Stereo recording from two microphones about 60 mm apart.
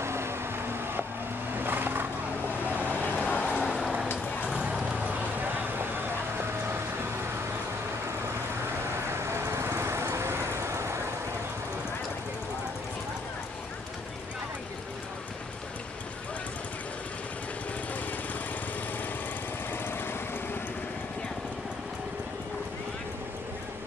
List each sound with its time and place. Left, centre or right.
0.0 s vehicle: right
1.6 s a sound: right
2.9 s vehicle: left
3.6 s vehicle: centre
9.1 s vehicle: right
19.8 s vehicle: left